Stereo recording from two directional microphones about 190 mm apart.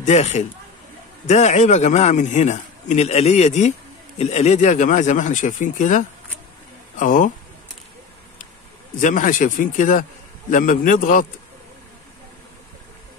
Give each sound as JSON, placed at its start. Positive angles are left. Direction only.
{"t": 0.0, "sound": "a man's voice", "side_deg": 35}
{"t": 8.9, "sound": "a man's voice", "side_deg": 45}